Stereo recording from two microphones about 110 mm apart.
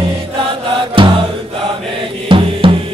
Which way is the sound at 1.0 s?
50° right (ahead or behind).